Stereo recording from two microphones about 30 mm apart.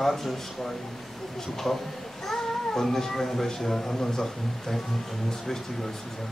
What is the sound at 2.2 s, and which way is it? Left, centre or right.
Speech, centre.